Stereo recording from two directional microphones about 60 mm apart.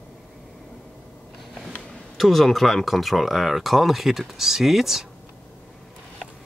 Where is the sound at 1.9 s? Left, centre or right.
Centre.